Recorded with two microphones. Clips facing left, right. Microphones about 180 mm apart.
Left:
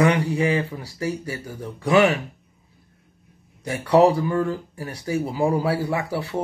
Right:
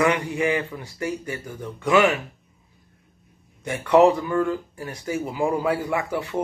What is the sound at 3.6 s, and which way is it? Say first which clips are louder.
Speech: even; 35° left (ahead or behind).